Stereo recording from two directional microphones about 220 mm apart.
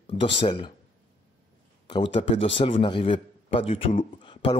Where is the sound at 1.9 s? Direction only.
20° left (ahead or behind).